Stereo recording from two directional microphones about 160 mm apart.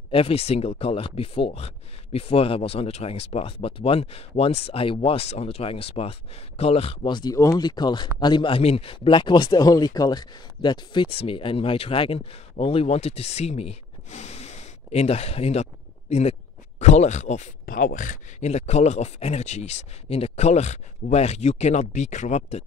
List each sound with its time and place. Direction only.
0.1 s speech: 35° left (ahead or behind)
17.6 s speech: 65° left (ahead or behind); by 22.6 s 45° left (ahead or behind)